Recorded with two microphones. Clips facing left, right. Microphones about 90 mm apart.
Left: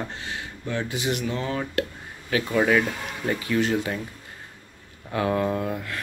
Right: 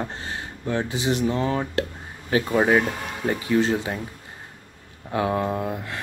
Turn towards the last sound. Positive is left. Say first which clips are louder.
# even
turn(degrees=-20)  # may be behind; listen again after turning